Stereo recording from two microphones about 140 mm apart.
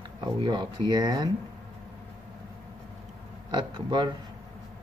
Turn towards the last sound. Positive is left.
turn(degrees=-30)  # may be behind; listen again after turning